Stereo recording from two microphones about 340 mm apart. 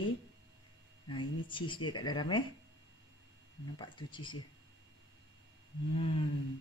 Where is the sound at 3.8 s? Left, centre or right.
Centre.